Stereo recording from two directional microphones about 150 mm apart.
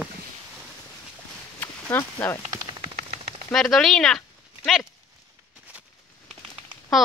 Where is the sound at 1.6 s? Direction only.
15° left (ahead or behind).